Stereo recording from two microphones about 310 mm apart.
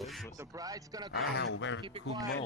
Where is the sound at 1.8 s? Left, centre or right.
Centre.